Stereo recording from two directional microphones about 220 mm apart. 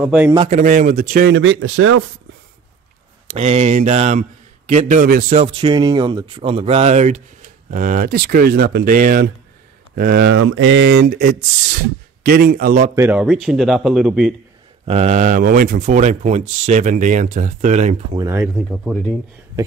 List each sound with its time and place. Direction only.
0.0 s speech: 5° right (ahead or behind)
0.4 s speech: 35° right (ahead or behind)
1.3 s speech: 60° right (ahead or behind)
3.3 s a man's voice: 30° right (ahead or behind)
5.4 s speech: 25° right (ahead or behind); by 10.4 s 50° right (ahead or behind)
10.4 s speech: 65° right (ahead or behind); by 12.9 s 40° right (ahead or behind)
12.9 s speech: 10° right (ahead or behind)
14.9 s speech: 30° right (ahead or behind)
18.1 s speech: 15° right (ahead or behind)
18.6 s speech: centre (ahead or behind)